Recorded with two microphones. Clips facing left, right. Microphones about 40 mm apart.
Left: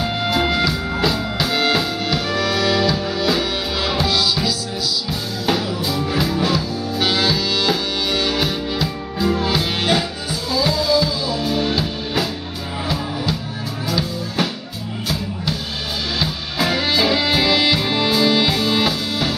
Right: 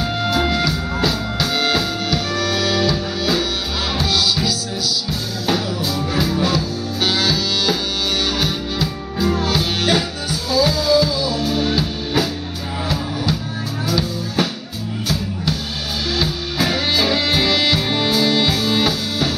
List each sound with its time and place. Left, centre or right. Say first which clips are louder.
0.0 s music: even; centre
16.2 s music: right 1 dB; centre